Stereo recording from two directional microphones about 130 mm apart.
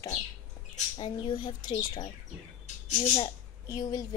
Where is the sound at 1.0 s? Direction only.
35° left (ahead or behind).